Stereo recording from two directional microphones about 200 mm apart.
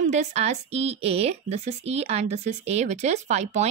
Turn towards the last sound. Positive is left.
turn(degrees=-35)  # may be behind; listen again after turning